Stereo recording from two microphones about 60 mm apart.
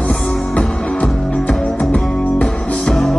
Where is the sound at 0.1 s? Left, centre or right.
Centre.